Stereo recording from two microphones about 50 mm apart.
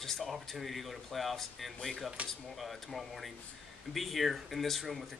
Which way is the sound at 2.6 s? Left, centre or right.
Centre.